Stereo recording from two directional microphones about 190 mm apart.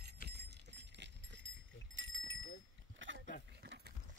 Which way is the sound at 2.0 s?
90° right.